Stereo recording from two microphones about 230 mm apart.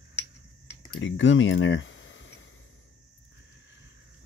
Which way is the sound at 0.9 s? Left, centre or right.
Left.